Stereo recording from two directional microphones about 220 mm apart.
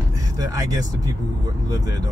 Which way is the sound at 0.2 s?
15° right (ahead or behind).